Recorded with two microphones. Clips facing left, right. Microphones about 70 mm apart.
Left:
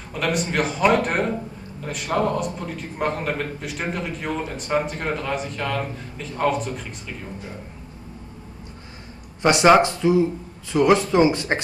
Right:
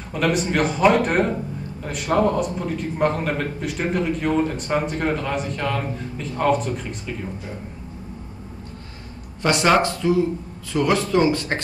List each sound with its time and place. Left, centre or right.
0.1 s a man's voice: centre
9.4 s speech: left